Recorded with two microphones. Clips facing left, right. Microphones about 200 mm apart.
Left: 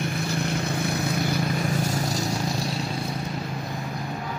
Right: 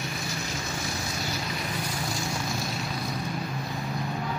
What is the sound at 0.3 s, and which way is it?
Vehicle, 60° left (ahead or behind).